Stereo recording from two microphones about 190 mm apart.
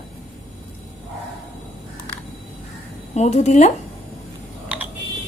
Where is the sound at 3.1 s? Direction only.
35° left (ahead or behind).